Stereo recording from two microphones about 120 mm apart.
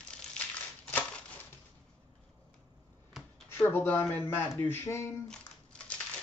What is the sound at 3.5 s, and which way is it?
Speech, 15° left (ahead or behind).